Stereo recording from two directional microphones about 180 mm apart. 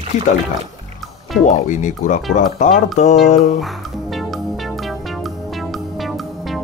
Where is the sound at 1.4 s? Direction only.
45° left (ahead or behind).